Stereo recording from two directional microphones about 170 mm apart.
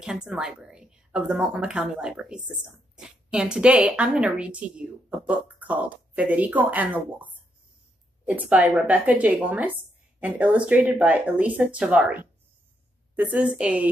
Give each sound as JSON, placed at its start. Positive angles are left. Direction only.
{"t": 0.0, "sound": "a woman's voice", "side_deg": -5}
{"t": 8.3, "sound": "a woman's voice", "side_deg": -10}